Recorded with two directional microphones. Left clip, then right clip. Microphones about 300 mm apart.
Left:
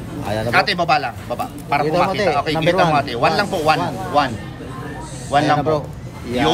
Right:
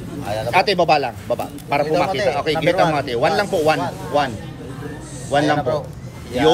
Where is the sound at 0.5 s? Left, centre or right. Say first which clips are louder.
Right 1 dB; centre.